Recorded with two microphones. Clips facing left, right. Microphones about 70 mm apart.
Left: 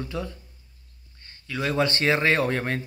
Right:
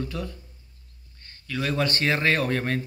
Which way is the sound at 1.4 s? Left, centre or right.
Left.